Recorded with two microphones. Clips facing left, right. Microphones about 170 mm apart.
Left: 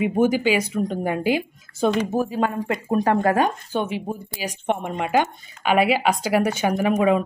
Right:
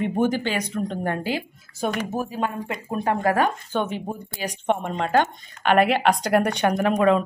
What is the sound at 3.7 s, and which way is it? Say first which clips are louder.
Speech: left 1 dB; 10° left (ahead or behind).